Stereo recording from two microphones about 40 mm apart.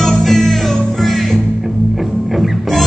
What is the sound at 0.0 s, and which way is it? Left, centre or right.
Music, centre.